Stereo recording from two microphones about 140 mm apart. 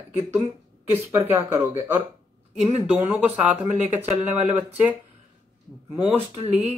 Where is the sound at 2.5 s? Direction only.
5° right (ahead or behind).